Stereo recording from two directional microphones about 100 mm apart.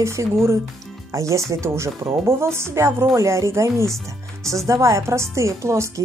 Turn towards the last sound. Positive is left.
turn(degrees=-30)  # may be behind; listen again after turning